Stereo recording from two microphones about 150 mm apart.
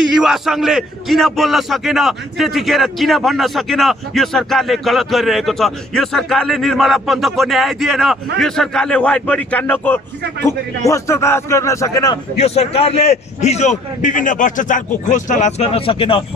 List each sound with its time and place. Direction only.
0.1 s a man's voice: centre (ahead or behind); by 12.2 s 25° left (ahead or behind)
12.4 s a man's voice: 45° left (ahead or behind)